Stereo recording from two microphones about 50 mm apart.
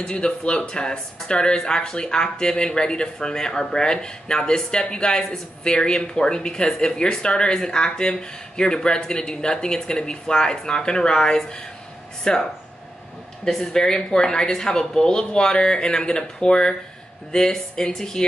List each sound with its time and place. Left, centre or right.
0.0 s speech: centre
13.5 s speech: centre